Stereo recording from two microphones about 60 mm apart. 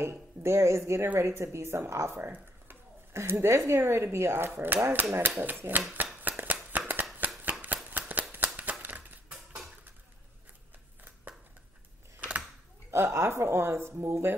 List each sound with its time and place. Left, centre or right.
0.0 s speech: right
2.1 s a sound: right
3.2 s speech: right
6.2 s shuffling cards: right
8.8 s crushing: right
12.2 s a sound: right
12.9 s speech: right